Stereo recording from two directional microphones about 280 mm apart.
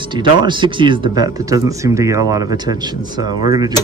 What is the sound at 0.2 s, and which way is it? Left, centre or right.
Speech, centre.